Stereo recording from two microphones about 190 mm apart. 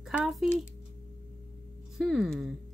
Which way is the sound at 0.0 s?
Centre (ahead or behind).